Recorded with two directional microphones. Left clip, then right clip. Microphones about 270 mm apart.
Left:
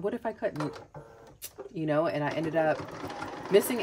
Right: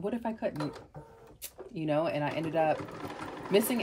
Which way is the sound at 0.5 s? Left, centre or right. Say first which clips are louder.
Left 2 dB; left.